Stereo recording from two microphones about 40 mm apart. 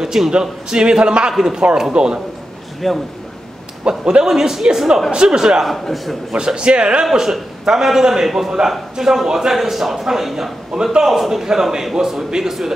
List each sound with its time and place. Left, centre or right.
0.0 s a man's voice: centre
2.8 s a man's voice: centre
4.0 s a man's voice: right
4.3 s a man's voice: centre
7.1 s a man's voice: centre
10.7 s a man's voice: centre
11.1 s a man's voice: centre